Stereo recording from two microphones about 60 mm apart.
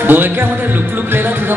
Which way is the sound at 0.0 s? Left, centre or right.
Right.